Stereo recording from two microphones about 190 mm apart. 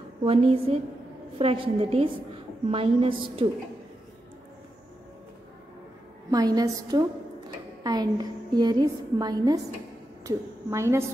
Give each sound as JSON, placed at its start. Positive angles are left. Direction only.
{"t": 0.2, "sound": "a woman's voice", "side_deg": -30}
{"t": 6.3, "sound": "a woman's voice", "side_deg": -20}